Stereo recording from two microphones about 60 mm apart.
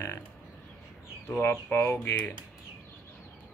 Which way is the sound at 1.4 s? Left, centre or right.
Left.